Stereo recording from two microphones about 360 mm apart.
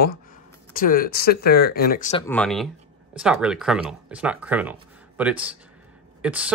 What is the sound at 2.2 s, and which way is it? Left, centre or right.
Speech, centre.